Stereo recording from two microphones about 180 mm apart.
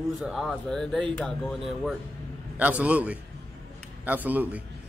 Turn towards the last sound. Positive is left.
turn(degrees=-10)  # may be behind; listen again after turning